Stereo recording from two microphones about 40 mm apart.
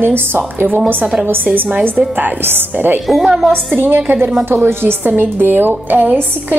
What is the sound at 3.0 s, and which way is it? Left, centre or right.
Speech, centre.